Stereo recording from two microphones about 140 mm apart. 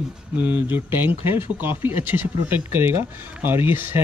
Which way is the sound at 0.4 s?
10° right (ahead or behind).